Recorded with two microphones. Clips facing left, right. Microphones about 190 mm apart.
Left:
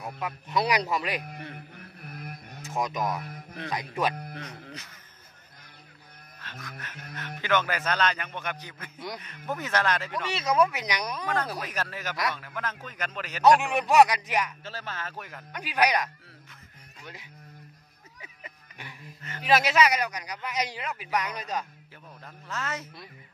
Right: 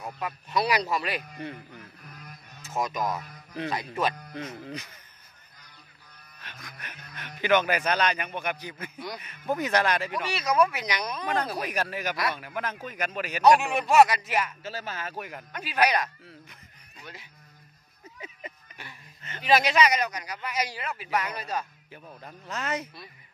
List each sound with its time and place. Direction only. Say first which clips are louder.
0.2 s a man's voice: even; 15° left (ahead or behind)
2.0 s a sound: left 6 dB; 60° left (ahead or behind)
2.8 s a man's voice: even; 15° left (ahead or behind)
4.4 s a man's voice: right 5 dB; 15° right (ahead or behind)
6.4 s a man's voice: left 3 dB; 15° right (ahead or behind)
10.3 s speech: even; 25° left (ahead or behind)
11.2 s a man's voice: right 3 dB; 15° right (ahead or behind)
13.6 s a man's voice: even; 15° left (ahead or behind)
14.6 s a man's voice: right 2 dB; 10° right (ahead or behind)
15.5 s a man's voice: even; 15° left (ahead or behind)
19.4 s a man's voice: even; 5° left (ahead or behind)
22.2 s a man's voice: right 1 dB; 20° right (ahead or behind)